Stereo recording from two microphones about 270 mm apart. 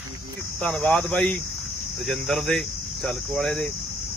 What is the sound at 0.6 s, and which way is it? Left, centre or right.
Speech, centre.